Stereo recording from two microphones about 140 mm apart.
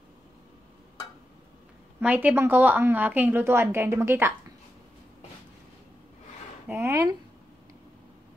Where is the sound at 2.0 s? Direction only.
10° right (ahead or behind).